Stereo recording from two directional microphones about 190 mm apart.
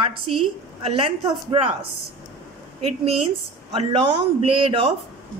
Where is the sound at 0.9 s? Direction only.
30° right (ahead or behind).